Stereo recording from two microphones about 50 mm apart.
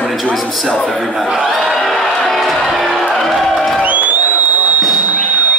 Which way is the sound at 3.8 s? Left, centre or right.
Right.